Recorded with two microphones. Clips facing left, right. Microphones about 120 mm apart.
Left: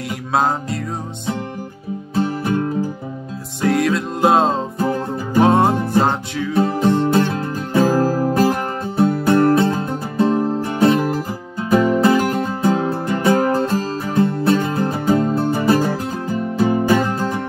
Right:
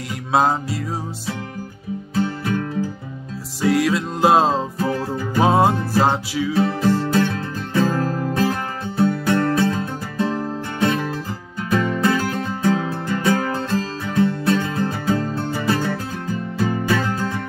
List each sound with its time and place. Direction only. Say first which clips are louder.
0.3 s music: right 1 dB; centre (ahead or behind)
2.1 s music: left 3 dB; 30° left (ahead or behind)
3.6 s music: left 1 dB; centre (ahead or behind)
6.6 s music: left 4 dB; 25° left (ahead or behind)